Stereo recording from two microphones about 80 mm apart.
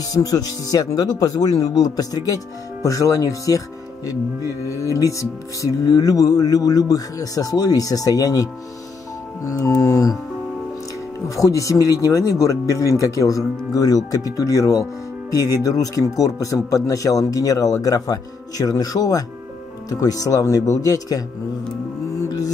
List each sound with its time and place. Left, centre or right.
0.1 s speech: left
11.1 s speech: left